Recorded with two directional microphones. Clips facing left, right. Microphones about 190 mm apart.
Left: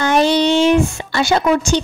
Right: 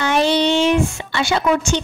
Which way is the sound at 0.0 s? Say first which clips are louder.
Left 3 dB; 40° left (ahead or behind).